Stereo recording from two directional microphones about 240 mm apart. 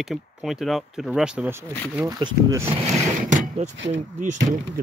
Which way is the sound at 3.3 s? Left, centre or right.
Right.